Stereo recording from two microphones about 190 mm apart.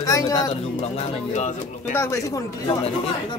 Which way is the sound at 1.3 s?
40° left (ahead or behind).